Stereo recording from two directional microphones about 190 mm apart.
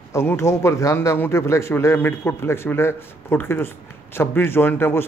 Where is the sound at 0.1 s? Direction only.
15° left (ahead or behind).